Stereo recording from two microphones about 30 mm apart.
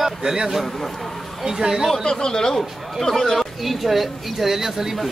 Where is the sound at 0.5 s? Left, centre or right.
Centre.